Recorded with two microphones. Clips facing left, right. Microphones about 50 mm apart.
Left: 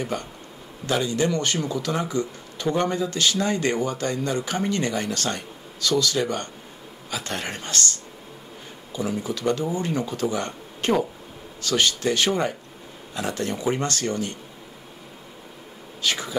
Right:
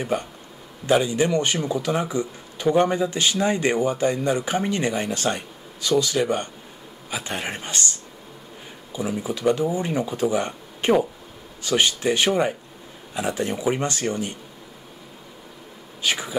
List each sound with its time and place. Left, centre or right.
0.1 s speech: centre
16.0 s speech: centre